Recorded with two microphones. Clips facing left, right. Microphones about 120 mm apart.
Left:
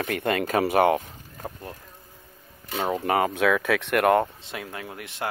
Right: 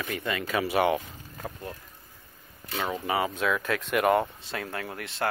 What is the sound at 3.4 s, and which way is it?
Speech, 90° left.